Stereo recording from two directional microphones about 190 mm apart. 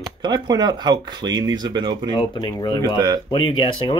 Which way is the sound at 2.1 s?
20° left (ahead or behind).